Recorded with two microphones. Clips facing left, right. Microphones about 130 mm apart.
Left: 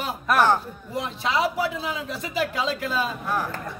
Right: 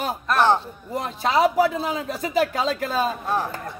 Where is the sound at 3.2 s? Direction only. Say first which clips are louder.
Right 2 dB; 25° right (ahead or behind).